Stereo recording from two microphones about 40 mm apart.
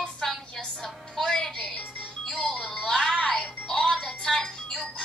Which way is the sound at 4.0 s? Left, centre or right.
Centre.